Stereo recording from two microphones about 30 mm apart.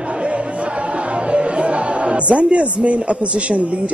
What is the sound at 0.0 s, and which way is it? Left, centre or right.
Music, right.